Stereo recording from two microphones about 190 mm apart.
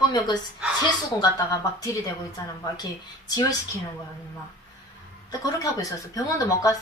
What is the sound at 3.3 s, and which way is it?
Speech, 20° left (ahead or behind).